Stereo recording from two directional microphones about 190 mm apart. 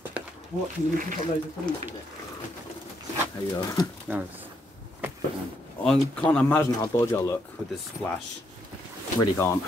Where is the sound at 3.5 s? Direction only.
20° left (ahead or behind).